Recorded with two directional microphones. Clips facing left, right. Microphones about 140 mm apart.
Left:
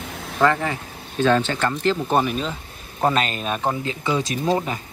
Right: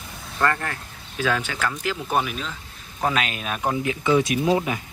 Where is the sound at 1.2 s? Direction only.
5° right (ahead or behind).